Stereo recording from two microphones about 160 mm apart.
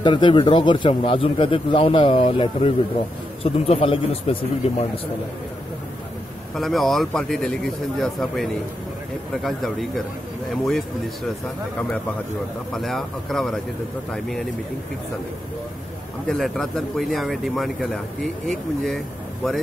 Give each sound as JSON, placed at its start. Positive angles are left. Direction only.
{"t": 0.0, "sound": "speech", "side_deg": 30}
{"t": 6.5, "sound": "speech", "side_deg": 0}
{"t": 12.7, "sound": "speech", "side_deg": 0}
{"t": 16.3, "sound": "speech", "side_deg": 0}